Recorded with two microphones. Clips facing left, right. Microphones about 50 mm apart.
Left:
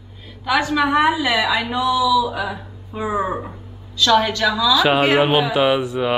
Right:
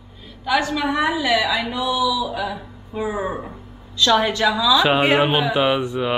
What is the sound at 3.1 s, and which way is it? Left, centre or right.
Speech, centre.